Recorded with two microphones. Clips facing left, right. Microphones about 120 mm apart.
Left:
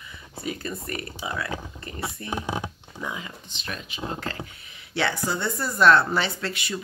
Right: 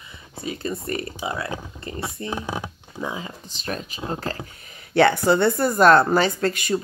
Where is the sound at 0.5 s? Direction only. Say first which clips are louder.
Right 4 dB; 25° right (ahead or behind).